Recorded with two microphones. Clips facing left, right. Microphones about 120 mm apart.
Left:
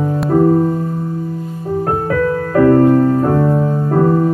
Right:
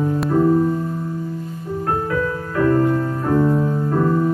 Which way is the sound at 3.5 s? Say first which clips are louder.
Left 4 dB; 35° left (ahead or behind).